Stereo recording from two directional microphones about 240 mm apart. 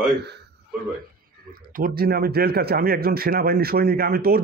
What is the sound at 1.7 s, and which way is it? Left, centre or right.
Speech, right.